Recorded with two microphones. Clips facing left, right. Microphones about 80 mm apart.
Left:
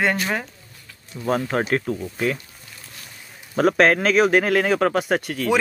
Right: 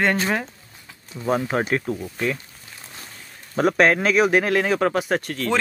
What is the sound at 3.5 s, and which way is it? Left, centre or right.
Speech, centre.